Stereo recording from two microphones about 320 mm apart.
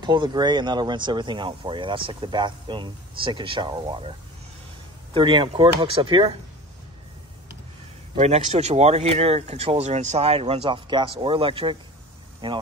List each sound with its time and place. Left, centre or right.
0.0 s speech: centre
5.1 s speech: centre
8.2 s speech: centre